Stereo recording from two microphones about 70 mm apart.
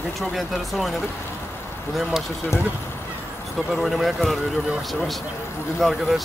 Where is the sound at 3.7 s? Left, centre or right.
Centre.